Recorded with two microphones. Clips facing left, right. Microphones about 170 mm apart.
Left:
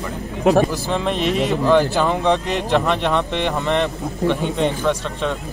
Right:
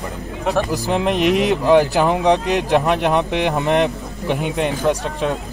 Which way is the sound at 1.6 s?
10° right (ahead or behind).